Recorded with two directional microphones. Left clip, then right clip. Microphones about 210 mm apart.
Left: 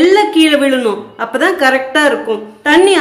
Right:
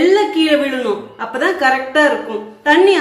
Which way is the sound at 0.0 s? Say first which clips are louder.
Left 4 dB; 50° left (ahead or behind).